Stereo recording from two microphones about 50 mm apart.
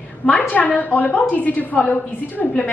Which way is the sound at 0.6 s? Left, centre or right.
Left.